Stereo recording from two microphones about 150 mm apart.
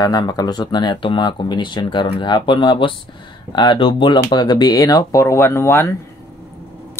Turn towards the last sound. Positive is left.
turn(degrees=15)  # may be behind; listen again after turning